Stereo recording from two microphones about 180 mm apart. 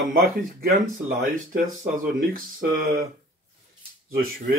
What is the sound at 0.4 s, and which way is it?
Speech, 50° right (ahead or behind).